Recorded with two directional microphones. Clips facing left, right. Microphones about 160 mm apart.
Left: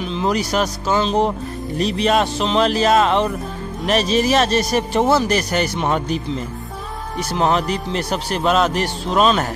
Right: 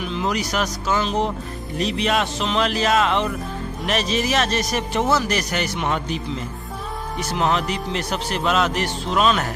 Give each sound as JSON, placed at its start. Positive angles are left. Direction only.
{"t": 0.0, "sound": "a man's voice", "side_deg": 30}
{"t": 7.2, "sound": "a man's voice", "side_deg": 35}